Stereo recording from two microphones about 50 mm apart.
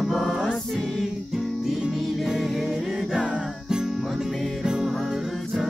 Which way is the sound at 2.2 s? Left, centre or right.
Centre.